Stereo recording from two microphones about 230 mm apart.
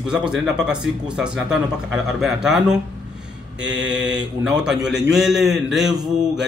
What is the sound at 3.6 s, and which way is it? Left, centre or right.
Mantra, right.